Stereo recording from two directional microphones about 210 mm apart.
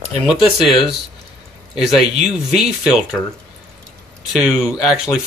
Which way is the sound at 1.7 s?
Centre (ahead or behind).